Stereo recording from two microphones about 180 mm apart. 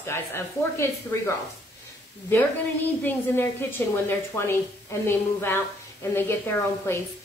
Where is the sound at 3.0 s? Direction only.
10° left (ahead or behind).